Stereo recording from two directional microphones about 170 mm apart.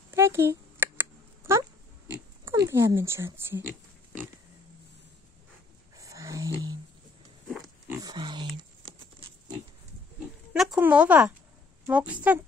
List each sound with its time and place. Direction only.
0.1 s a sound: 15° right (ahead or behind)
2.0 s pig: 15° right (ahead or behind)
2.7 s speech: 15° right (ahead or behind)
5.9 s roaring cats: 20° right (ahead or behind)
7.5 s a sound: 20° right (ahead or behind)
10.5 s speech: 5° right (ahead or behind)